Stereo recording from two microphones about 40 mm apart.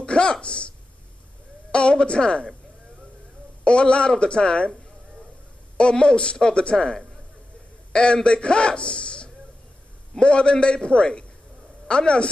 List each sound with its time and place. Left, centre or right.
0.0 s speech: left
1.7 s a woman's voice: left
3.6 s a man's voice: left
5.8 s a man's voice: left